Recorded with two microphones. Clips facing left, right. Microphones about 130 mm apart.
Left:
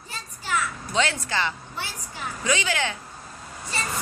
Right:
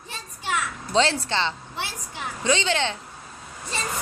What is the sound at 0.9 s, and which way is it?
Speech, 30° right (ahead or behind).